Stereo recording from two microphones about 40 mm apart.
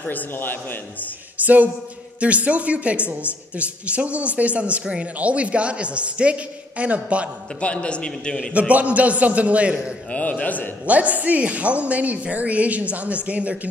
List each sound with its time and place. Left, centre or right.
0.0 s a man's voice: left
1.4 s music: right
2.1 s a man's voice: right
7.6 s a man's voice: left
8.5 s a man's voice: right
10.1 s a man's voice: left
10.9 s a man's voice: right